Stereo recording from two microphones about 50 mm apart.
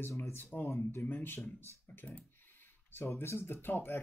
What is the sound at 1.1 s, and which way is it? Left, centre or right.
Speech, left.